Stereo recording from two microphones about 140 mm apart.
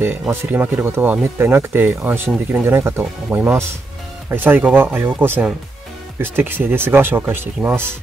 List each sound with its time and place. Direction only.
0.0 s speech: 15° right (ahead or behind)